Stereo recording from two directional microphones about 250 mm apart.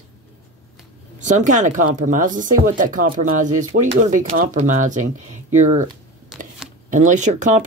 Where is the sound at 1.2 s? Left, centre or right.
Right.